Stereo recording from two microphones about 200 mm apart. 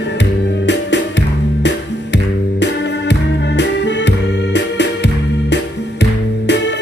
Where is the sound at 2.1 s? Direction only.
60° left (ahead or behind).